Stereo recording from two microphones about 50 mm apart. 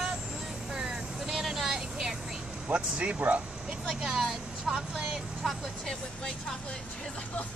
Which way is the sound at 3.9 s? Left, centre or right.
Centre.